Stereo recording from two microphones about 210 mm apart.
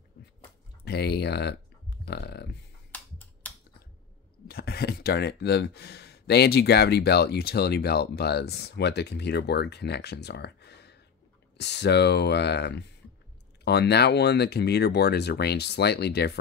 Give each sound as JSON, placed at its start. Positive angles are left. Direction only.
{"t": 0.8, "sound": "a sound", "side_deg": 50}
{"t": 2.9, "sound": "computer keyboard", "side_deg": 5}
{"t": 4.5, "sound": "speech", "side_deg": 50}